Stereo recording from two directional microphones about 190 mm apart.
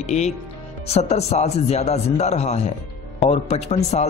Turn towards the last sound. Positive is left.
turn(degrees=35)  # may be behind; listen again after turning